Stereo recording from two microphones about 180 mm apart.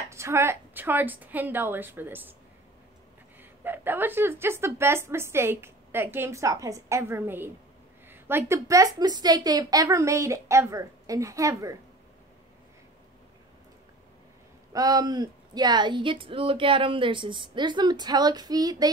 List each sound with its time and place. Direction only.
0.1 s a woman's voice: 15° right (ahead or behind)
3.3 s a woman's voice: 10° right (ahead or behind)
14.7 s a woman's voice: 20° right (ahead or behind)